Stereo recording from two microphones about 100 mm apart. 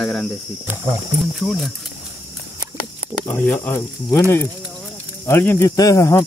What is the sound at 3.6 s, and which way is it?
Speech, 20° left (ahead or behind).